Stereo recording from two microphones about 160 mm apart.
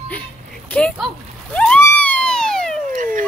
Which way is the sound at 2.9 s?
55° right (ahead or behind).